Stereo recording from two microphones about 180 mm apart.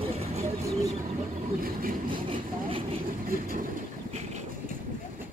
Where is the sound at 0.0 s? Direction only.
35° right (ahead or behind).